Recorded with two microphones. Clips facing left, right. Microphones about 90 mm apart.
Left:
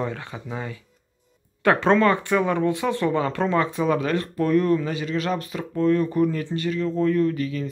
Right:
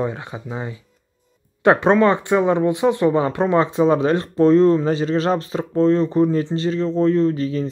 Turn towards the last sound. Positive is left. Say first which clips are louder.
# right 4 dB
turn(degrees=-30)  # may be behind; listen again after turning